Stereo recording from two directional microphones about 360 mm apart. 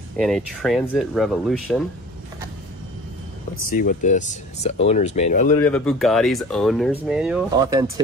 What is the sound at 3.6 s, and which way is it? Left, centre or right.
Speech, left.